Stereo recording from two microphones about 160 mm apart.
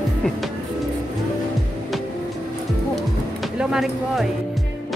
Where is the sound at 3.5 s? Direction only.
Centre (ahead or behind).